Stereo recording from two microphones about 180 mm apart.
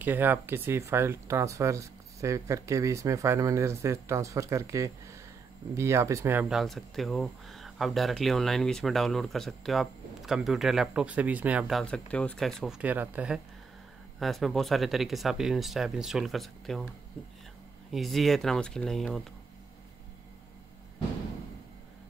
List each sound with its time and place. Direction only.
0.0 s speech: 10° right (ahead or behind)
6.5 s speech: centre (ahead or behind)
17.9 s speech: centre (ahead or behind)